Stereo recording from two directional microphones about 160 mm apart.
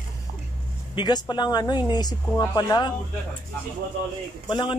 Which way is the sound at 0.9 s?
25° left (ahead or behind).